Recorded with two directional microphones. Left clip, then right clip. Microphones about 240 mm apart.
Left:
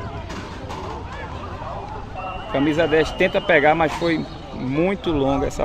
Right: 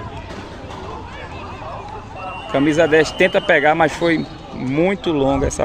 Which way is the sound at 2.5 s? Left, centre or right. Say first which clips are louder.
Right 4 dB; right.